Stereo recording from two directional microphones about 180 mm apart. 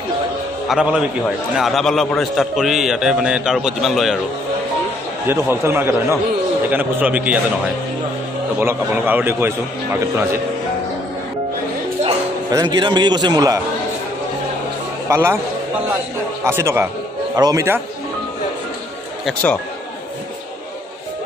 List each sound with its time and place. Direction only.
0.7 s a man's voice: 5° right (ahead or behind)
5.2 s a man's voice: 10° right (ahead or behind)
8.5 s a man's voice: 10° right (ahead or behind)
12.4 s a man's voice: 20° right (ahead or behind)
15.0 s a man's voice: 15° right (ahead or behind)
16.4 s a man's voice: 15° right (ahead or behind)
19.2 s a man's voice: 5° left (ahead or behind)